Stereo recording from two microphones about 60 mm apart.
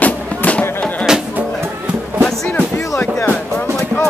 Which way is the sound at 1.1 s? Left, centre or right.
Centre.